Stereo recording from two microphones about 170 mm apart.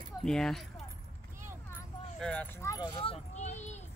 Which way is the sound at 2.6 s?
25° left (ahead or behind).